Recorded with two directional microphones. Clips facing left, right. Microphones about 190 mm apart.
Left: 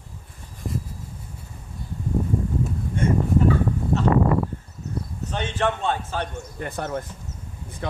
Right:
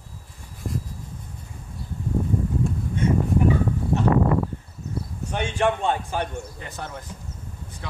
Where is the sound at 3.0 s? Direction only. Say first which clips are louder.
Even; 50° left (ahead or behind).